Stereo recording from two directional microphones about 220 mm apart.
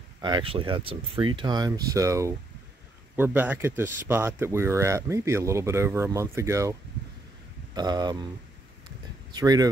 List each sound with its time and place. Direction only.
0.2 s speech: 20° right (ahead or behind)
9.3 s speech: 15° right (ahead or behind)